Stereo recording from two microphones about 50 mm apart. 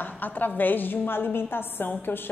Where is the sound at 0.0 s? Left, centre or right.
Left.